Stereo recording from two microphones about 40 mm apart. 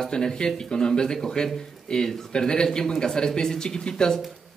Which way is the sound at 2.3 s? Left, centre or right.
Centre.